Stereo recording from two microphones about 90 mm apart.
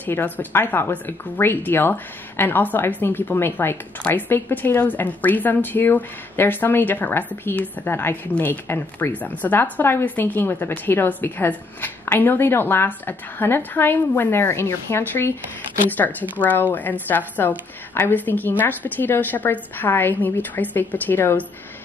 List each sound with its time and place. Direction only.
0.0 s speech: 20° left (ahead or behind)